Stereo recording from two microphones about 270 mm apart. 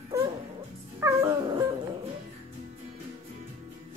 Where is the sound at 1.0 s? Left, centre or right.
Centre.